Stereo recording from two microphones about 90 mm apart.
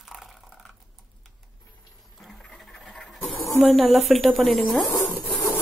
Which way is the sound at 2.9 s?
5° left (ahead or behind).